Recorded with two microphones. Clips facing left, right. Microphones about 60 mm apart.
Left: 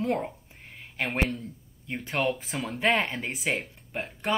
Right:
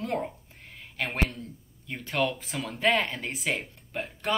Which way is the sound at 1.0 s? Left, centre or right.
Centre.